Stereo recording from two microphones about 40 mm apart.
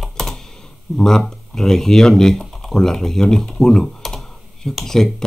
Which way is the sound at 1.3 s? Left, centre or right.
Centre.